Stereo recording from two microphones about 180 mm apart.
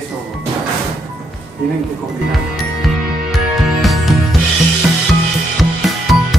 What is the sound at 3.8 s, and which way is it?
Music, centre (ahead or behind).